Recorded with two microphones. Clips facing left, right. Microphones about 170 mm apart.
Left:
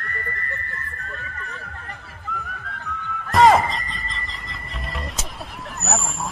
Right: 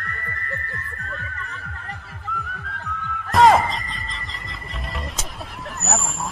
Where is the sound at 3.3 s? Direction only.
Centre (ahead or behind).